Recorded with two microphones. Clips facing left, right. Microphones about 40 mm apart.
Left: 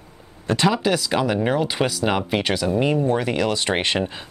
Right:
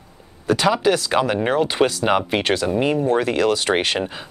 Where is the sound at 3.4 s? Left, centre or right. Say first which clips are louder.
Right 3 dB; centre.